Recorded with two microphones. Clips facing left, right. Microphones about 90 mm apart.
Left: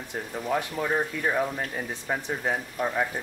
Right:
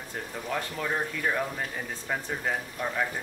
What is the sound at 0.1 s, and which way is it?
Speech, 10° left (ahead or behind).